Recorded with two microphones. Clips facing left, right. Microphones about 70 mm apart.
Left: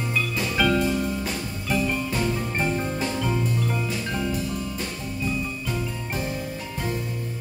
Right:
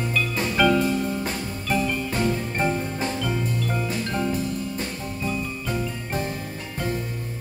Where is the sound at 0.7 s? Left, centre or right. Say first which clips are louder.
Right 1 dB; right.